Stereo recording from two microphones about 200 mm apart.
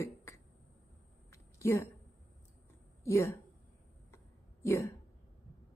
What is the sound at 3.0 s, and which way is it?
Speech, 15° left (ahead or behind).